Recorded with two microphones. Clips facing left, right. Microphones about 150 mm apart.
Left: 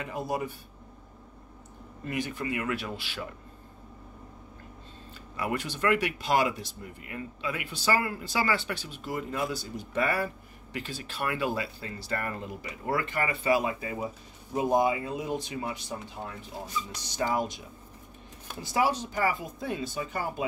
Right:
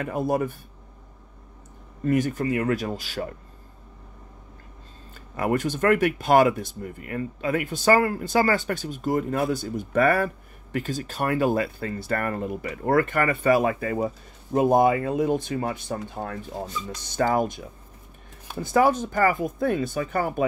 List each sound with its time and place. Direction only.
0.0 s speech: 50° right (ahead or behind)
2.0 s speech: 45° right (ahead or behind)
5.1 s speech: 50° right (ahead or behind)